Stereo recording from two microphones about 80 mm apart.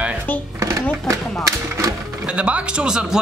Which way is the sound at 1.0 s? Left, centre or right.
Right.